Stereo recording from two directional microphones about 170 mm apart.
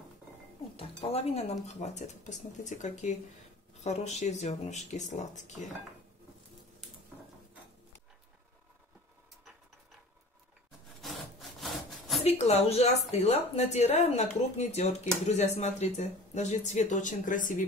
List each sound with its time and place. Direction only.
0.7 s speech: 35° left (ahead or behind)
11.0 s wood: centre (ahead or behind)
12.2 s speech: 40° left (ahead or behind)